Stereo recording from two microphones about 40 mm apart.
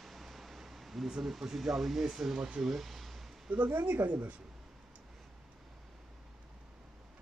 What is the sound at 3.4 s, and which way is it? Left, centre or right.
Speech, right.